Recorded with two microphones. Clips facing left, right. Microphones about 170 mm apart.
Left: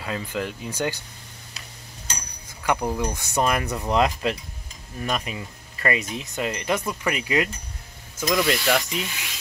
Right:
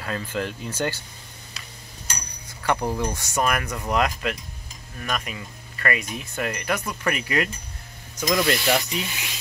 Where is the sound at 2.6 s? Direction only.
10° left (ahead or behind).